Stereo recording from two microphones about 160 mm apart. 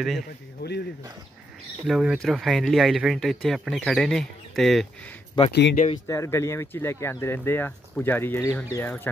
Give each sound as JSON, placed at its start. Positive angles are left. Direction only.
{"t": 0.6, "sound": "speech", "side_deg": 90}
{"t": 1.9, "sound": "speech", "side_deg": 0}
{"t": 5.4, "sound": "speech", "side_deg": 30}
{"t": 6.0, "sound": "speech", "side_deg": 20}